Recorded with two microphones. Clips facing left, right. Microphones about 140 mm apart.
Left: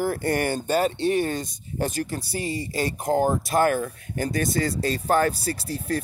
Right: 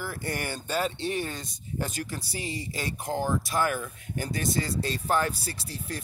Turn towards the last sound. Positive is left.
turn(degrees=50)  # may be behind; listen again after turning